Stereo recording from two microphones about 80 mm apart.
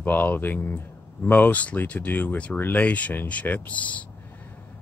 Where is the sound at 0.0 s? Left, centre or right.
Left.